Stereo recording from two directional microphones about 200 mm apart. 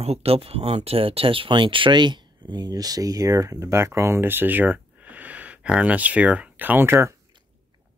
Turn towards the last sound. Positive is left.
turn(degrees=-10)  # may be behind; listen again after turning